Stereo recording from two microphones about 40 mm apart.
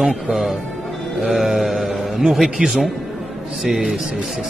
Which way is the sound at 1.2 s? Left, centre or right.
Centre.